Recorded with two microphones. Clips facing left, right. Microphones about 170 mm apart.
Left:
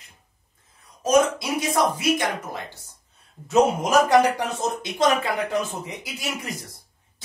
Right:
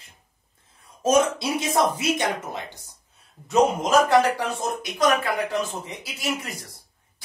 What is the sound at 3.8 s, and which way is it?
Speech, 15° left (ahead or behind).